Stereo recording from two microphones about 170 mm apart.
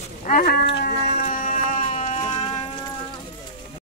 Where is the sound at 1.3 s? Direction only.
50° left (ahead or behind).